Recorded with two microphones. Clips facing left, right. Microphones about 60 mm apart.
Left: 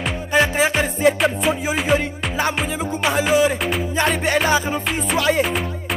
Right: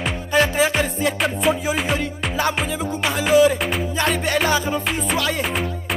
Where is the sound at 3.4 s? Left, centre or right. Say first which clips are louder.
Right 2 dB; centre.